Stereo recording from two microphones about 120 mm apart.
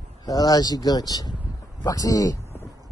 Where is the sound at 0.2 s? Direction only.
30° left (ahead or behind).